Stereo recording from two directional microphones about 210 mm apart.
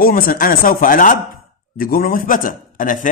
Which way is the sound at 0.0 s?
45° left (ahead or behind).